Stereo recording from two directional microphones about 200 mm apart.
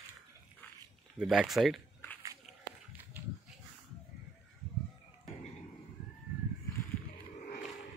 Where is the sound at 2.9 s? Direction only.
10° right (ahead or behind).